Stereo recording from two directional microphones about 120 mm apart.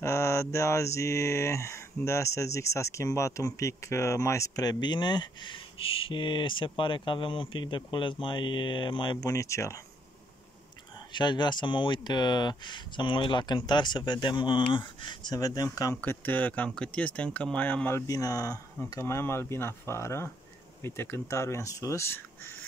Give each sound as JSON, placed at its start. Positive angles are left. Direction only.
{"t": 0.0, "sound": "speech", "side_deg": 25}
{"t": 9.3, "sound": "speech", "side_deg": 25}
{"t": 11.1, "sound": "speech", "side_deg": 40}
{"t": 16.0, "sound": "speech", "side_deg": 15}
{"t": 18.0, "sound": "speech", "side_deg": 30}